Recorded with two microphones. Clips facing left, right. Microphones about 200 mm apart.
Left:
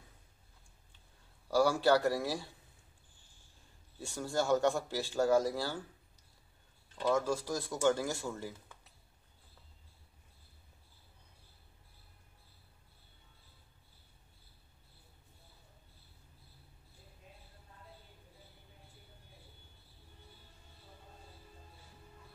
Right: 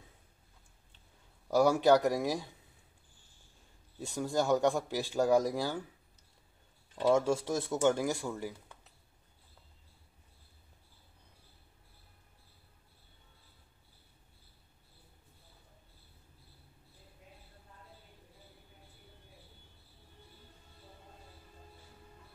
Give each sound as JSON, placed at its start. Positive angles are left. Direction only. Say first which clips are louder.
{"t": 1.5, "sound": "speech", "louder": "right 3 dB", "side_deg": -20}
{"t": 4.0, "sound": "speech", "louder": "right 3 dB", "side_deg": -15}
{"t": 7.0, "sound": "speech", "louder": "right 4 dB", "side_deg": -25}